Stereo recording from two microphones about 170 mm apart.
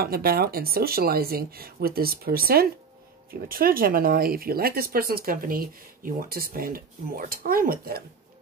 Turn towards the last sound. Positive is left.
turn(degrees=-60)  # may be behind; listen again after turning